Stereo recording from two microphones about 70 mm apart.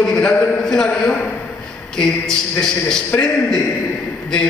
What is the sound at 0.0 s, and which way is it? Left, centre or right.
Speech, centre.